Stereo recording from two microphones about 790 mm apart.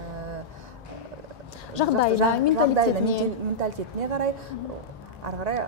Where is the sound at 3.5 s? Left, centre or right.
Right.